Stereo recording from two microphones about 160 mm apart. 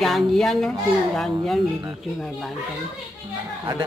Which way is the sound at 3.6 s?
25° right (ahead or behind).